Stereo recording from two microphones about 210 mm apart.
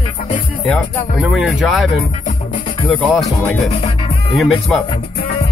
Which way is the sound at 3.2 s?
30° left (ahead or behind).